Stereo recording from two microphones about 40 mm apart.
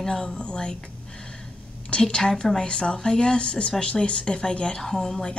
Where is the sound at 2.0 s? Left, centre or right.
Centre.